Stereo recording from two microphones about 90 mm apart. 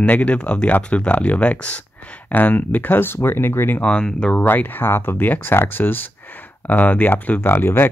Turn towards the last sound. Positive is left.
turn(degrees=25)  # may be behind; listen again after turning